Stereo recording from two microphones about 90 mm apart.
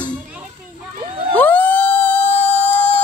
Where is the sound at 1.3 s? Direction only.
20° left (ahead or behind).